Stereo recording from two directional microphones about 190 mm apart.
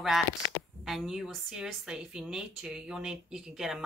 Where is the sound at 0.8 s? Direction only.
Centre (ahead or behind).